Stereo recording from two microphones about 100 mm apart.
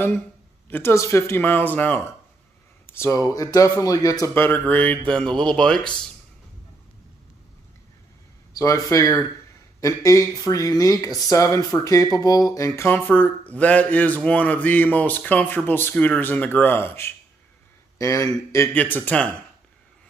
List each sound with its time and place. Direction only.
0.7 s speech: 20° left (ahead or behind)
0.9 s speech: 30° left (ahead or behind)
3.2 s speech: 35° left (ahead or behind)
4.3 s speech: 20° left (ahead or behind)
8.5 s speech: 35° left (ahead or behind)
12.8 s speech: 15° left (ahead or behind)
17.9 s speech: 35° left (ahead or behind)
18.7 s speech: 20° left (ahead or behind)